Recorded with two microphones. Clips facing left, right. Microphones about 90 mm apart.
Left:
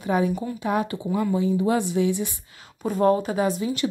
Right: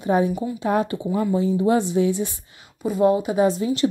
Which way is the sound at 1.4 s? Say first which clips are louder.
Right 4 dB; 30° right (ahead or behind).